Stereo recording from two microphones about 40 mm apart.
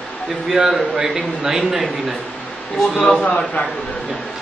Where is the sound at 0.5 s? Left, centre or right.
Centre.